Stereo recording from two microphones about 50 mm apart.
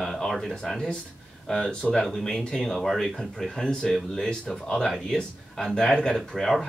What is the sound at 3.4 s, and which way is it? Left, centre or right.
Speech, centre.